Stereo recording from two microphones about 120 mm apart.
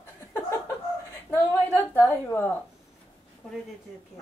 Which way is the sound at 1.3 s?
15° left (ahead or behind).